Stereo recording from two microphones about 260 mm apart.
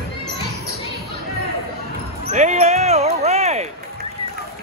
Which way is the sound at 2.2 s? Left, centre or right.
Right.